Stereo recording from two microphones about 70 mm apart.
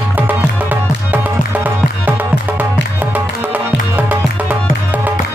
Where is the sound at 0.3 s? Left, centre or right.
Right.